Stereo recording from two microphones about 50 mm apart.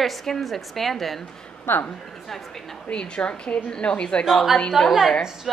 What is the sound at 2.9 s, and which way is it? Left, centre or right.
A woman's voice, centre.